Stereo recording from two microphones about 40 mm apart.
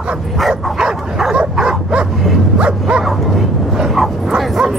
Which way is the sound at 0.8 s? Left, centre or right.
Centre.